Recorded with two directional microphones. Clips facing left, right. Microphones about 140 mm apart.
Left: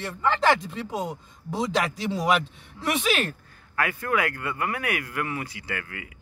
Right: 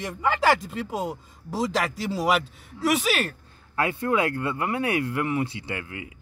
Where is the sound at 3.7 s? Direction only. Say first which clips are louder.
Right 2 dB; 25° right (ahead or behind).